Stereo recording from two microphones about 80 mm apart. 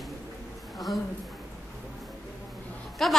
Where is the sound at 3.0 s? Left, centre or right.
Centre.